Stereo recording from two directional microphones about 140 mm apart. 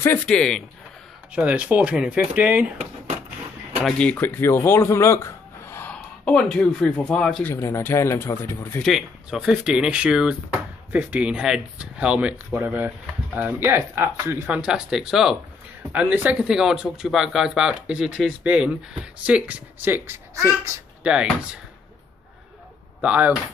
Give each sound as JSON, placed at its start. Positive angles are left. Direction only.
{"t": 0.3, "sound": "speech", "side_deg": 5}
{"t": 1.3, "sound": "speech", "side_deg": -10}
{"t": 3.8, "sound": "speech", "side_deg": 10}
{"t": 7.4, "sound": "speech", "side_deg": 15}
{"t": 8.8, "sound": "speech", "side_deg": 0}
{"t": 14.5, "sound": "speech", "side_deg": -5}
{"t": 22.9, "sound": "speech", "side_deg": -10}